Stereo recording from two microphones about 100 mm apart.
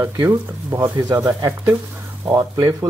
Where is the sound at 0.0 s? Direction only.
25° right (ahead or behind).